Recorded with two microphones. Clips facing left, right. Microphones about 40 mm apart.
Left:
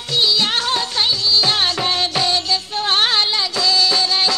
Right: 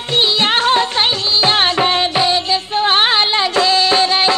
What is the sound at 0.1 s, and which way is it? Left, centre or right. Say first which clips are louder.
Music: right 3 dB; right.